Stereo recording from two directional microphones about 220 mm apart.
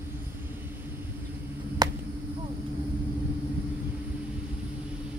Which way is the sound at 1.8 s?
15° right (ahead or behind).